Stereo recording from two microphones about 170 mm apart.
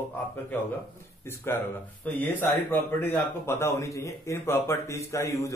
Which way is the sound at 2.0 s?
10° left (ahead or behind).